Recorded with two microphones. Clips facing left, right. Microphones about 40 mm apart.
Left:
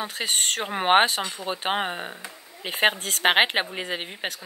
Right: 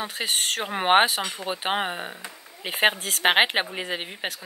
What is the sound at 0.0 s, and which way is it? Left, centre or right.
Speech, centre.